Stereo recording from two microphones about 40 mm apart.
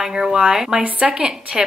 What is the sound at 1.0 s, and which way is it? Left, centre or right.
Speech, right.